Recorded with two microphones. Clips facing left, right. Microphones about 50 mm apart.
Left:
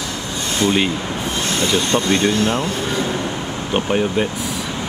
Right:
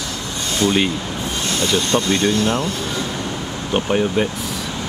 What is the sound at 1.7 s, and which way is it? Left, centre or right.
Speech, left.